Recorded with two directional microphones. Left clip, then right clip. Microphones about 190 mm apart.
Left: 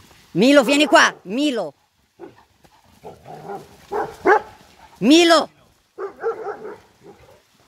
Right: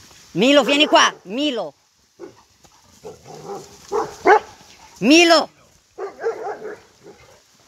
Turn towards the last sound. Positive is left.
turn(degrees=45)  # may be behind; listen again after turning